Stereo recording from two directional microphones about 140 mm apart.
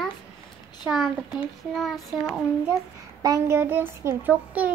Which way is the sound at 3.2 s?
20° right (ahead or behind).